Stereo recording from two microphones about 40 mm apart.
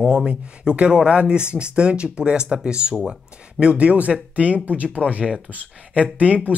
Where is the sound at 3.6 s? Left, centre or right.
Right.